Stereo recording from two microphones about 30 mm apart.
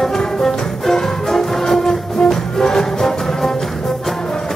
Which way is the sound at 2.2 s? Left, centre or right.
Left.